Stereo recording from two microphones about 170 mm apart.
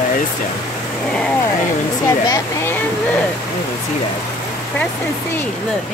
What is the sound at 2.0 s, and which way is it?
Speech, 15° left (ahead or behind).